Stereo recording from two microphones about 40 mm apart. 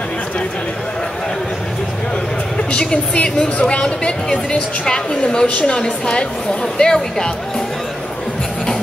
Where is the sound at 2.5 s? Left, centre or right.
Left.